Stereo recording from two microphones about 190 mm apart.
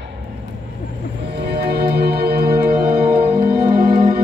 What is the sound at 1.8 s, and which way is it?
Music, 55° right (ahead or behind).